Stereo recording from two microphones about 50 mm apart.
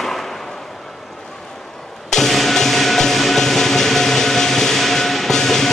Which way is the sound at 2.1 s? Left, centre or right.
Centre.